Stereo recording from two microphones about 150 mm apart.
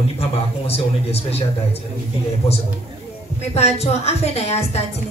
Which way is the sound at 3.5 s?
45° left (ahead or behind).